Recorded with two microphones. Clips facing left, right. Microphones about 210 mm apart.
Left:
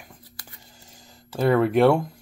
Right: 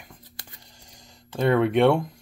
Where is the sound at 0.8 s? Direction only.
5° left (ahead or behind).